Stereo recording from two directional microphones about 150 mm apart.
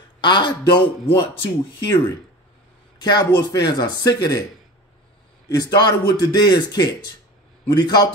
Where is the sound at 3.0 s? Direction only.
30° left (ahead or behind).